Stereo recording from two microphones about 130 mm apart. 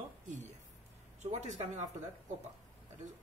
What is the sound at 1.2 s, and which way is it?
Speech, 65° right (ahead or behind).